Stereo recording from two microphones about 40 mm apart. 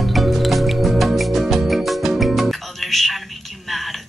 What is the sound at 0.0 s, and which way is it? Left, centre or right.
Music, centre.